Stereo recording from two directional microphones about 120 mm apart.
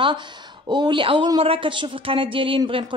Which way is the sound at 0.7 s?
40° right (ahead or behind).